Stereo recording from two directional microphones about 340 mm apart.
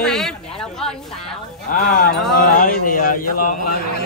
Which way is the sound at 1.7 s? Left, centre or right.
Left.